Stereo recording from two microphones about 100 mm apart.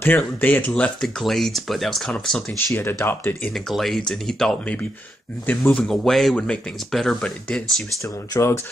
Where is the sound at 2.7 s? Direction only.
20° left (ahead or behind).